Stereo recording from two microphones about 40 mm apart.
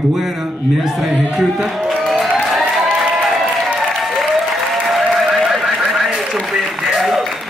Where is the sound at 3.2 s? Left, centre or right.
Centre.